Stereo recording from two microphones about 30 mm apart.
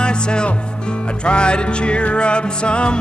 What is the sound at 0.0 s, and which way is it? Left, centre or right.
Music, left.